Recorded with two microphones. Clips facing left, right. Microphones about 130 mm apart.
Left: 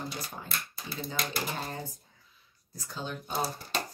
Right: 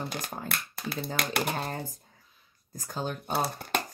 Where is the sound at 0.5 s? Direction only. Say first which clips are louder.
Right 4 dB; 65° right (ahead or behind); by 3.3 s 45° right (ahead or behind).